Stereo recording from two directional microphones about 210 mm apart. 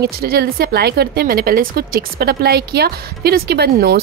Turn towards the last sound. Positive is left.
turn(degrees=-50)  # may be behind; listen again after turning